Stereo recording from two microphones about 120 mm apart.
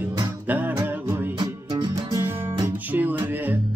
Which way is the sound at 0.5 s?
15° right (ahead or behind).